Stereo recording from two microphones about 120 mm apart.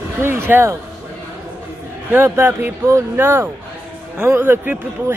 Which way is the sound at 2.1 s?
20° right (ahead or behind).